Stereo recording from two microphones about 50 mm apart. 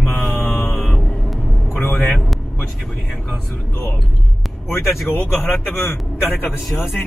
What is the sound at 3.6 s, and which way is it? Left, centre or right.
Speech, left.